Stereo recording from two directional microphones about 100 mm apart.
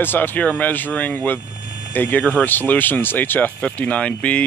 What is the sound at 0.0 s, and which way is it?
Speech, 20° left (ahead or behind).